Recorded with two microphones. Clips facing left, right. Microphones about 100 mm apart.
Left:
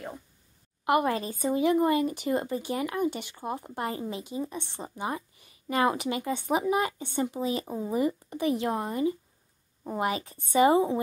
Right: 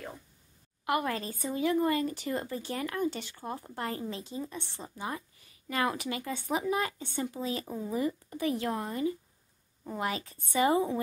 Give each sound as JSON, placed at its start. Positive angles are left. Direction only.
{"t": 0.8, "sound": "speech", "side_deg": 20}
{"t": 9.8, "sound": "speech", "side_deg": 20}